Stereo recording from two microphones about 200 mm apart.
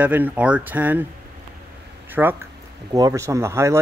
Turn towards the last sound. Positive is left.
turn(degrees=-15)  # may be behind; listen again after turning